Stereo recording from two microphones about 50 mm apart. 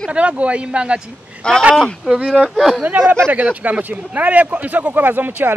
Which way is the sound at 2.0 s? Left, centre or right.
Centre.